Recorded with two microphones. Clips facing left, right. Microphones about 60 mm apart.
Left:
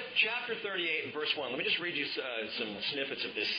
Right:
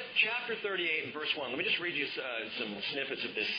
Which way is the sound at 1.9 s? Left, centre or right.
Right.